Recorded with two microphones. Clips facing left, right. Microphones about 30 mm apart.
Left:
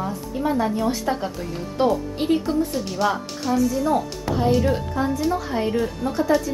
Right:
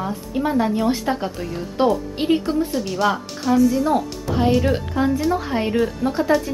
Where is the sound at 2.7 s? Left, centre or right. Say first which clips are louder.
Right 2 dB; centre.